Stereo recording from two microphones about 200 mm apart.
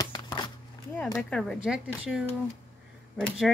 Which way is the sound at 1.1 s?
5° left (ahead or behind).